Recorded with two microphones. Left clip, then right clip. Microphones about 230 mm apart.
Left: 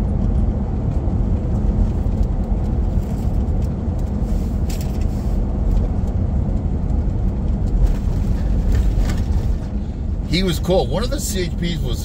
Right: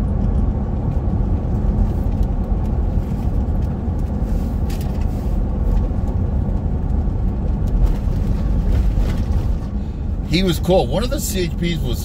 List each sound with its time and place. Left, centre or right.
10.3 s speech: centre